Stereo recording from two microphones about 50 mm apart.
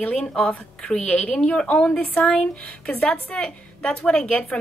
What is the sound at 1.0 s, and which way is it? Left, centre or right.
A woman's voice, left.